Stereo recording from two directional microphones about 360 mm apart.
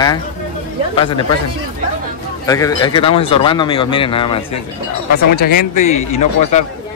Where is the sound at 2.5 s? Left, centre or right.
Centre.